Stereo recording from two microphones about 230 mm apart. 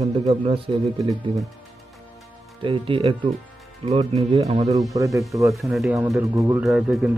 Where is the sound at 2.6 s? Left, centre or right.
Right.